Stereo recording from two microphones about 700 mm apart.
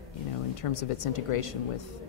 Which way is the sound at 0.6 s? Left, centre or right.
Left.